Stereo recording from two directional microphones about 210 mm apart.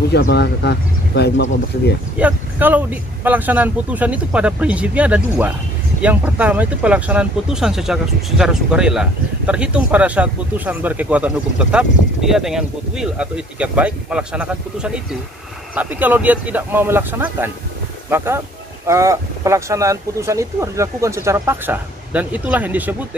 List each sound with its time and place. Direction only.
0.1 s speech: 50° left (ahead or behind)
2.1 s speech: 5° right (ahead or behind)